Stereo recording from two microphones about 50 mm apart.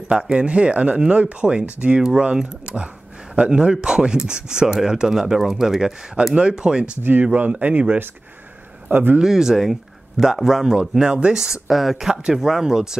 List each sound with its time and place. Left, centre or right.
0.1 s speech: centre
4.6 s speech: centre
7.0 s speech: right
8.9 s speech: right
9.2 s speech: centre
11.6 s speech: centre
12.2 s speech: centre